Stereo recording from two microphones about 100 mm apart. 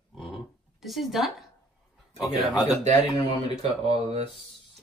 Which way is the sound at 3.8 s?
80° right.